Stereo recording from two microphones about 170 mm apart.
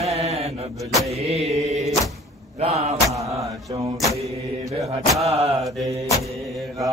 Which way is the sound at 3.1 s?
20° right (ahead or behind).